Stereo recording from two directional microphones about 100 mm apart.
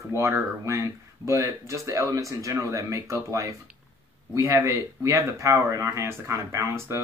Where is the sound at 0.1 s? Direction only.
30° right (ahead or behind).